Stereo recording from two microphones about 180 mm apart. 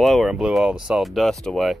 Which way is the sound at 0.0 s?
Centre (ahead or behind).